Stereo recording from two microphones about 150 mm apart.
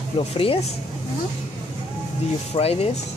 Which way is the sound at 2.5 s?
45° left (ahead or behind).